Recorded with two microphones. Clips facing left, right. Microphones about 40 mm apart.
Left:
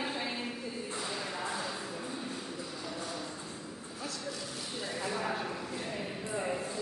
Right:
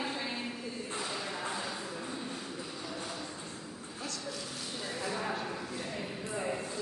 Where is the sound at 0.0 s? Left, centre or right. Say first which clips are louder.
Left 1 dB; centre.